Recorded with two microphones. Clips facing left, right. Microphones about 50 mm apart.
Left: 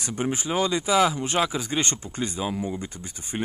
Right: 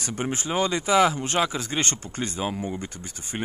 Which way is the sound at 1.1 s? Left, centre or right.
Centre.